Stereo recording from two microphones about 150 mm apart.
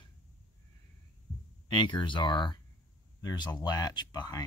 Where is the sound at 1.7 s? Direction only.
30° left (ahead or behind).